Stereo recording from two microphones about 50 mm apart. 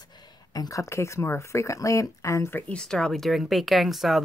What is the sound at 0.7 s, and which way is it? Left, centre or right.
Speech, left.